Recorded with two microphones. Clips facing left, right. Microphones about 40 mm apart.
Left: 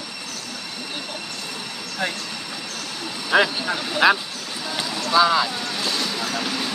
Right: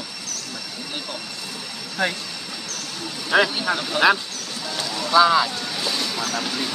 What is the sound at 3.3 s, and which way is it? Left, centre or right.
Speech, centre.